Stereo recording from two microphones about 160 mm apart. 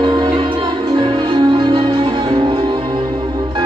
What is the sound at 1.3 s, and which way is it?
Music, 30° right (ahead or behind).